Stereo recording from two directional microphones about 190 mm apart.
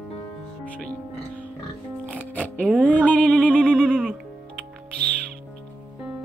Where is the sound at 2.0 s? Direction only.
5° left (ahead or behind).